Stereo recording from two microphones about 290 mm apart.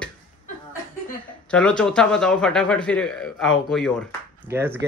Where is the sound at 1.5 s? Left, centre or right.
Centre.